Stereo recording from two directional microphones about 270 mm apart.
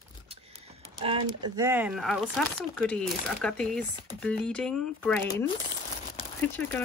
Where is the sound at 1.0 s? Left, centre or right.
Centre.